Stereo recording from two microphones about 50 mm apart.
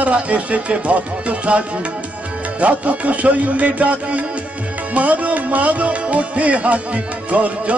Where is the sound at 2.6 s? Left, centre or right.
Right.